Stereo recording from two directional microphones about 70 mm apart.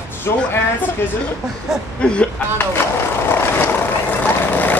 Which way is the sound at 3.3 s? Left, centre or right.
Left.